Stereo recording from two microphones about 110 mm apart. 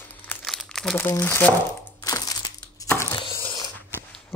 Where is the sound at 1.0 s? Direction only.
20° left (ahead or behind).